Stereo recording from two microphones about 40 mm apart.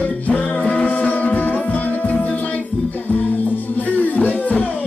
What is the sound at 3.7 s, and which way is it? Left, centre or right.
Music, left.